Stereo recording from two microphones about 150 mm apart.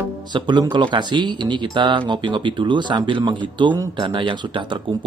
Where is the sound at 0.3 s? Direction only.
30° right (ahead or behind).